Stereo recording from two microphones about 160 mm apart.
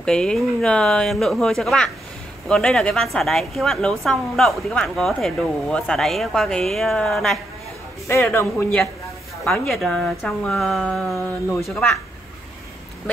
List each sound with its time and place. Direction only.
0.0 s a woman's voice: 5° left (ahead or behind)
8.1 s speech: 15° left (ahead or behind)
9.5 s a woman's voice: centre (ahead or behind)